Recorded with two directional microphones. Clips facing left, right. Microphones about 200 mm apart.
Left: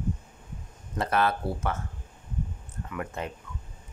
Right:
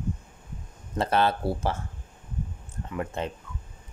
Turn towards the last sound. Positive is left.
turn(degrees=-30)  # may be behind; listen again after turning